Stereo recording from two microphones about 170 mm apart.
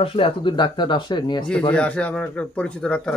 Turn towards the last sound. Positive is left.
turn(degrees=5)  # may be behind; listen again after turning